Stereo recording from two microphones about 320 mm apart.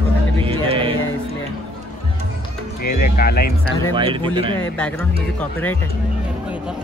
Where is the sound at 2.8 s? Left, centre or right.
Left.